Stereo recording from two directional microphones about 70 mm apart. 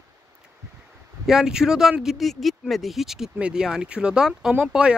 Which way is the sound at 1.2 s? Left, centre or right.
Centre.